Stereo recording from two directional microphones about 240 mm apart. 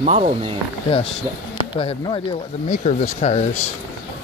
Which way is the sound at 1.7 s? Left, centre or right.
Left.